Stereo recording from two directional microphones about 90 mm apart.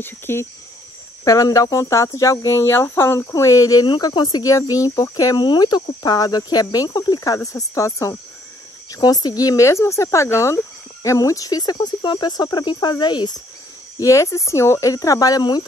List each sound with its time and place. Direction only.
0.0 s speech: 25° left (ahead or behind)
1.2 s speech: 35° left (ahead or behind)
3.8 s speech: 60° left (ahead or behind)
7.3 s speech: 35° left (ahead or behind); by 13.4 s 55° left (ahead or behind)
13.9 s speech: 35° left (ahead or behind)